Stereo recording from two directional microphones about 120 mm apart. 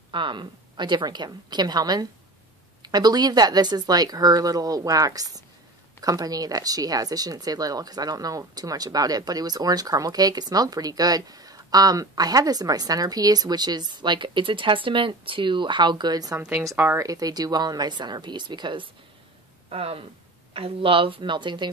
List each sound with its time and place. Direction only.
0.1 s speech: 40° right (ahead or behind)
16.3 s speech: 10° right (ahead or behind)
17.0 s speech: 30° right (ahead or behind)
19.7 s speech: 55° right (ahead or behind)